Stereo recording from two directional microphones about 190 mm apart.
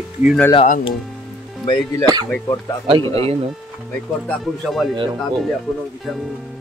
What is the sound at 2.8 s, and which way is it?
Speech, 25° right (ahead or behind).